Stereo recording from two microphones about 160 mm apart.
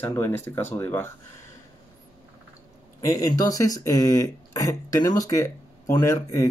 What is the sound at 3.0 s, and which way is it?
Speech, 20° left (ahead or behind).